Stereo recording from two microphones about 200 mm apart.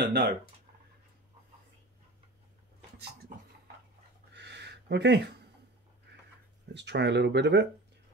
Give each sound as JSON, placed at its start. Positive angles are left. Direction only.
{"t": 0.0, "sound": "speech", "side_deg": -50}
{"t": 4.3, "sound": "a sound", "side_deg": -60}
{"t": 6.7, "sound": "speech", "side_deg": -60}